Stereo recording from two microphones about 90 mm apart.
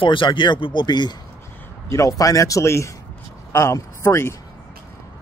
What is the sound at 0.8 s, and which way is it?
Speech, 55° left (ahead or behind).